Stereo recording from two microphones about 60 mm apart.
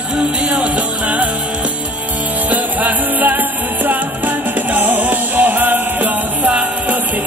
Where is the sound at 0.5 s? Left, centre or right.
Right.